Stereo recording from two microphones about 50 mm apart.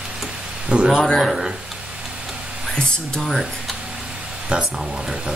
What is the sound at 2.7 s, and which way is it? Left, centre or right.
Speech, centre.